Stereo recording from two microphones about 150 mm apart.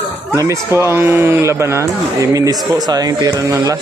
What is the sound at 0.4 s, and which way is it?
Speech, 20° right (ahead or behind).